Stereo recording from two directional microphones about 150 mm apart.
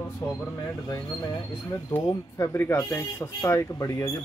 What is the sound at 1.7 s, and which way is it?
A man's voice, 15° left (ahead or behind).